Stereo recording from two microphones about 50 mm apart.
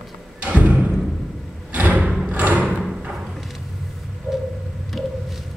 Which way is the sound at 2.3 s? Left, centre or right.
Right.